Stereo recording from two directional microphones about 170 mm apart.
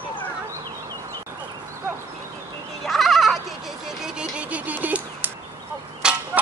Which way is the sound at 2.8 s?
Centre (ahead or behind).